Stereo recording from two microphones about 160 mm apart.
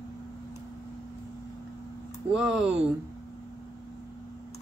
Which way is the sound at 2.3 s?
5° right (ahead or behind).